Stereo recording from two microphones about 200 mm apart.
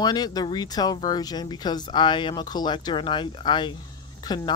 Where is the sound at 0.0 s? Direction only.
20° left (ahead or behind).